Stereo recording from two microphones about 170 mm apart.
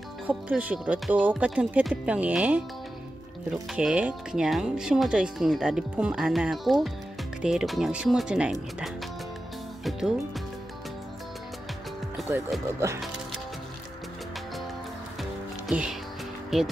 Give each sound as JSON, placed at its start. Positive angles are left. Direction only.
{"t": 0.3, "sound": "speech", "side_deg": -10}
{"t": 3.7, "sound": "speech", "side_deg": -5}
{"t": 9.8, "sound": "music", "side_deg": -5}
{"t": 12.2, "sound": "music", "side_deg": 0}
{"t": 12.7, "sound": "speech", "side_deg": -15}
{"t": 15.7, "sound": "speech", "side_deg": -5}